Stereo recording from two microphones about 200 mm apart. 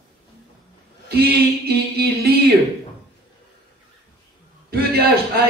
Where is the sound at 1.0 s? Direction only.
55° right (ahead or behind).